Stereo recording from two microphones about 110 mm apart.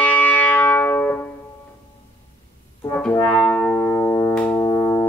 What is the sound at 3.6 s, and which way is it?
Music, 15° left (ahead or behind).